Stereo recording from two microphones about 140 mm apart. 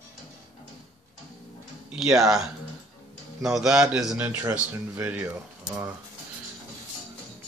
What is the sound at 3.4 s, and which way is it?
Speech, 5° right (ahead or behind).